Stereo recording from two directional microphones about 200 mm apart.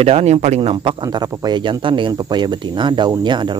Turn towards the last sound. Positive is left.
turn(degrees=-20)  # may be behind; listen again after turning